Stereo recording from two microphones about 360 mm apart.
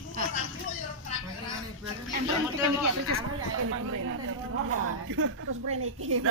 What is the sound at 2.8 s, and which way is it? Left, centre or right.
Speech, right.